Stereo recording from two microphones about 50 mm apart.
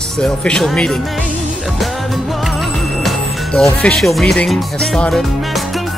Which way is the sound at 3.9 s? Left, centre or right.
Centre.